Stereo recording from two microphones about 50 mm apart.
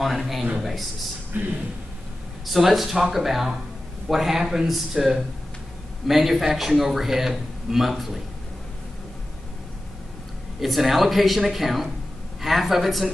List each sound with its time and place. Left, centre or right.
0.0 s a man's voice: centre
1.3 s speech: right
2.4 s a man's voice: centre
10.6 s a man's voice: centre